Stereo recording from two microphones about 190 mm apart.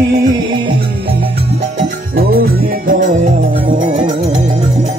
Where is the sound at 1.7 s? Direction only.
55° right (ahead or behind); by 4.0 s 40° right (ahead or behind).